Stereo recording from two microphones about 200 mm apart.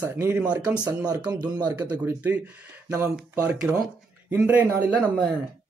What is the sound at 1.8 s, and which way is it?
Speech, 10° right (ahead or behind).